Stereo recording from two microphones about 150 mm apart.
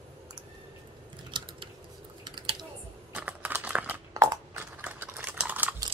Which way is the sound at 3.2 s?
10° right (ahead or behind).